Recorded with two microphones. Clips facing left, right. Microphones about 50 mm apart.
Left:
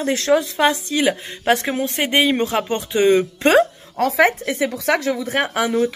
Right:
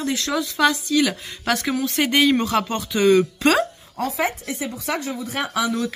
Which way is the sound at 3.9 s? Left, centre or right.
Left.